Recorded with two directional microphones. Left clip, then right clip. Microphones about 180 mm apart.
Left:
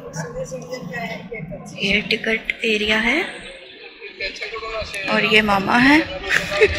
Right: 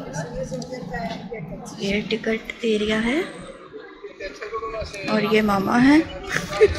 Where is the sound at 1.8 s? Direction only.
15° right (ahead or behind).